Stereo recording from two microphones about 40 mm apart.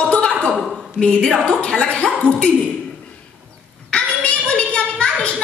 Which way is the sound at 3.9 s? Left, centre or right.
Left.